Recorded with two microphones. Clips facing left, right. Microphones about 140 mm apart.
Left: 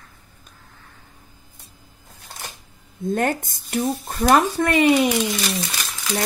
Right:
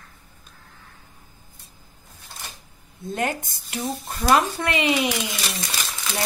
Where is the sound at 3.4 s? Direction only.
45° left (ahead or behind).